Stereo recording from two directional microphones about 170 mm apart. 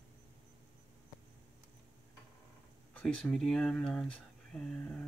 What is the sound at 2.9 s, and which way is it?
Speech, 5° left (ahead or behind).